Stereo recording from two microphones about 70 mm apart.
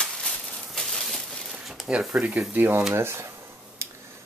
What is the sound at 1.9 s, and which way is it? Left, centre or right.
Speech, centre.